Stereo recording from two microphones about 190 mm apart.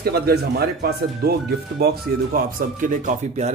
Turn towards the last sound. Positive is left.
turn(degrees=-45)  # may be behind; listen again after turning